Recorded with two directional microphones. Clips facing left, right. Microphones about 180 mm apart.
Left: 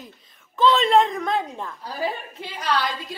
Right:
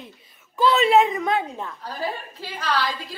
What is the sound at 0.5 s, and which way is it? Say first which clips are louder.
A woman's voice: even; 10° right (ahead or behind).